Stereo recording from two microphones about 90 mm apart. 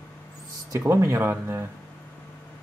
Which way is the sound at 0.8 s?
30° right (ahead or behind).